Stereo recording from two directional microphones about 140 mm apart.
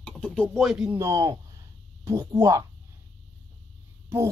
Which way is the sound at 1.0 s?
25° right (ahead or behind).